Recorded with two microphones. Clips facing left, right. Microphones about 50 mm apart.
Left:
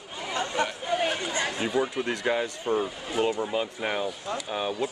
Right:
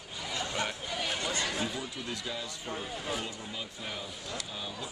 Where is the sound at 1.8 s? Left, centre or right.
Left.